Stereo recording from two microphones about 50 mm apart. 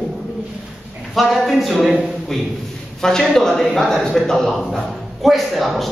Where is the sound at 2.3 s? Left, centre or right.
Centre.